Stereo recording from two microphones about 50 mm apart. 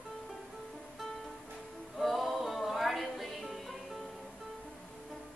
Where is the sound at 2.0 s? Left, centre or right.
Centre.